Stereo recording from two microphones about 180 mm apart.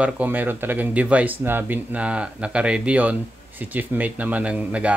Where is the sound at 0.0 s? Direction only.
10° right (ahead or behind).